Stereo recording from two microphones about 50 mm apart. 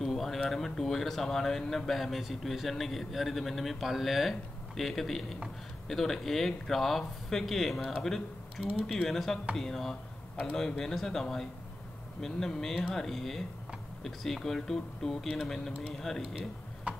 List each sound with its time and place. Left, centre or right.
0.0 s a sound: centre
0.5 s speech: centre
16.9 s tick-tock: right